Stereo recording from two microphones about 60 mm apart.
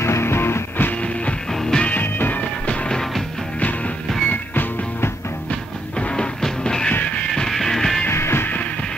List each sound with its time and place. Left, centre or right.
0.0 s music: left
0.9 s music: left
1.5 s music: centre
1.8 s music: left
2.7 s music: centre
3.0 s music: centre
3.5 s music: left
5.9 s music: centre
6.9 s music: left
7.3 s music: centre
8.1 s music: left